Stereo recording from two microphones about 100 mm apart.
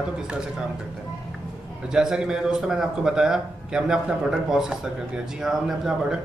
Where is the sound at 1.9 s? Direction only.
5° right (ahead or behind).